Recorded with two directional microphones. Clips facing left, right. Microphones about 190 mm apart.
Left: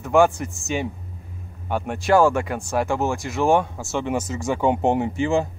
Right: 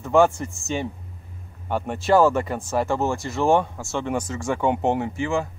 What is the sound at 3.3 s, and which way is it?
Speech, 15° left (ahead or behind).